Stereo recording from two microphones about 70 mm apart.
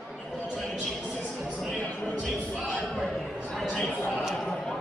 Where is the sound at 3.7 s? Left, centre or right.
Left.